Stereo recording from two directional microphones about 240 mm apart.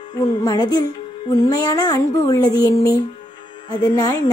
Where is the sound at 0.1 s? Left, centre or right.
Centre.